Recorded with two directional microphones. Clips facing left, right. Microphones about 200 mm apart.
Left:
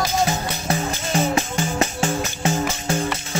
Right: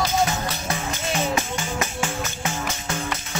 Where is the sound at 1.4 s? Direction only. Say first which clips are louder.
Left 4 dB; 35° left (ahead or behind).